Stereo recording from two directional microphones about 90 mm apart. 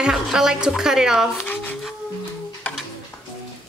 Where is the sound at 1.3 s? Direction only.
20° left (ahead or behind).